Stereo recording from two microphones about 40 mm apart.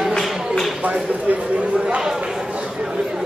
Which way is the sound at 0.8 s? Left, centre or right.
Right.